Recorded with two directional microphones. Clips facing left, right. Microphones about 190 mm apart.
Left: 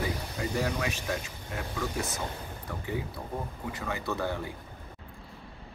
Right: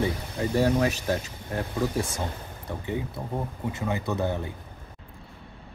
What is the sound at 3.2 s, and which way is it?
Speech, 25° right (ahead or behind).